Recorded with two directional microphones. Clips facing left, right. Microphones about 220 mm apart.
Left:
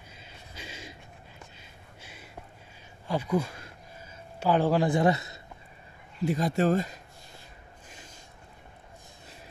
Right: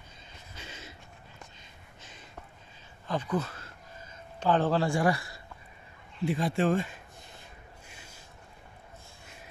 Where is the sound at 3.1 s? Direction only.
10° left (ahead or behind).